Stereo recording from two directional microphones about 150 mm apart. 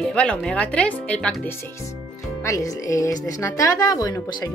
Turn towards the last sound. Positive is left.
turn(degrees=25)  # may be behind; listen again after turning